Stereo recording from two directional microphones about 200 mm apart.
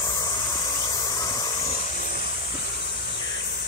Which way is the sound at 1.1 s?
20° left (ahead or behind).